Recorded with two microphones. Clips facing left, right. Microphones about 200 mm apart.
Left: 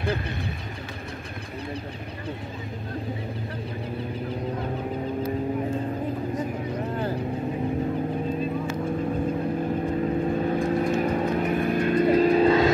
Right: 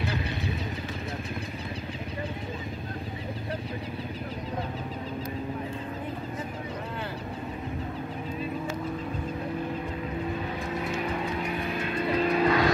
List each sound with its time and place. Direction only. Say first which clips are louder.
10.4 s vehicle: left 9 dB; 45° left (ahead or behind); by 12.7 s 25° left (ahead or behind)